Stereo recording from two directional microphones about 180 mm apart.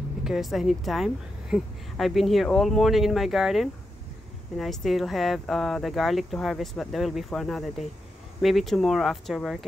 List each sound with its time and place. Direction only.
0.2 s a woman's voice: centre (ahead or behind)